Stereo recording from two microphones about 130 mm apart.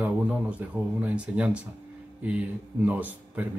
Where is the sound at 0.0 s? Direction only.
10° right (ahead or behind).